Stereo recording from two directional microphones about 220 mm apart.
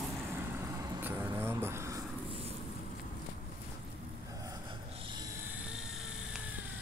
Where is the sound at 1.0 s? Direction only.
10° right (ahead or behind).